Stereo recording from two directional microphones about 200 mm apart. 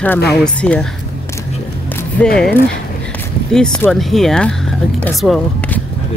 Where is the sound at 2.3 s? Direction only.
5° left (ahead or behind).